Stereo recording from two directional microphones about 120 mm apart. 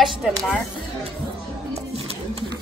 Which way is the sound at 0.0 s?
5° right (ahead or behind).